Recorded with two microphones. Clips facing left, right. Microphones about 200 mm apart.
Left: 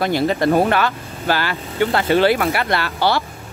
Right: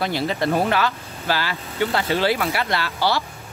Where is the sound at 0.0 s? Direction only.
50° left (ahead or behind).